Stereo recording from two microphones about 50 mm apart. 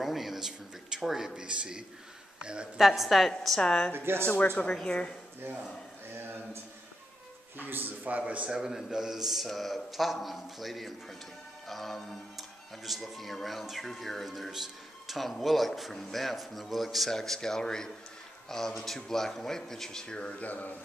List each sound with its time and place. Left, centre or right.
0.0 s a man's voice: centre
1.4 s a man's voice: right
2.8 s speech: centre
3.6 s speech: centre
3.9 s speech: right
4.6 s speech: centre
6.1 s a sound: right
7.5 s speech: right
8.5 s speech: centre
20.4 s mantra: left